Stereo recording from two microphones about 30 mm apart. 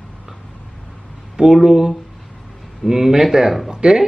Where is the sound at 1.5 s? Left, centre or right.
Centre.